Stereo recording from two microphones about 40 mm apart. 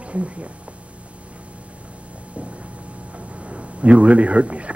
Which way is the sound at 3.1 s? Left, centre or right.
Right.